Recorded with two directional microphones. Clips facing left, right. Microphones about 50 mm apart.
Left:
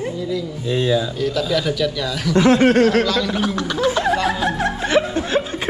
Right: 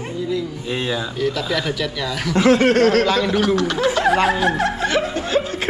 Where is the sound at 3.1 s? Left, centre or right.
Right.